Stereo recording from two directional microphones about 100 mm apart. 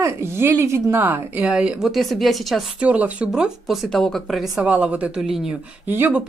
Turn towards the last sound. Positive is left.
turn(degrees=-15)  # may be behind; listen again after turning